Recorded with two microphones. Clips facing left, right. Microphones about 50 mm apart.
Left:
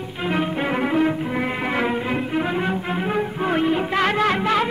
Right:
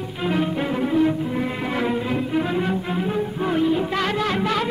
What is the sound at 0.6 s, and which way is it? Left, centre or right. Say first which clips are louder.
Music: left 1 dB; left.